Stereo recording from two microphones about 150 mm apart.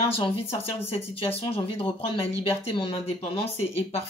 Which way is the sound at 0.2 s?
40° left (ahead or behind).